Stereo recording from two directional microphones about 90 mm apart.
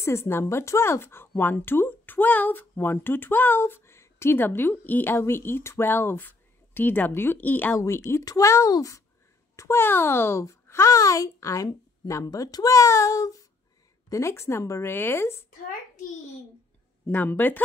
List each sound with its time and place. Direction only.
0.0 s speech: 30° left (ahead or behind)
7.7 s a child's voice: 35° left (ahead or behind)
9.6 s a child's voice: 30° left (ahead or behind)
17.0 s speech: 20° left (ahead or behind)